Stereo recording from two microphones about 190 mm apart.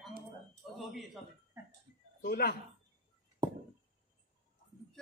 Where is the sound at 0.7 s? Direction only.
Centre (ahead or behind).